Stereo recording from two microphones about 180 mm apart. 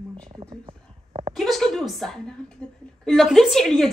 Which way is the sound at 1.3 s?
Centre (ahead or behind).